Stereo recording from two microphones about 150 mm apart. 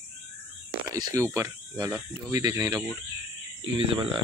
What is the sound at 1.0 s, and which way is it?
Speech, 25° right (ahead or behind).